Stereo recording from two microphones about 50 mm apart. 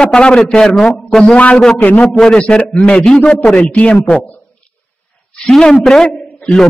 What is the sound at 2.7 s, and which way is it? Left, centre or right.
A man's voice, left.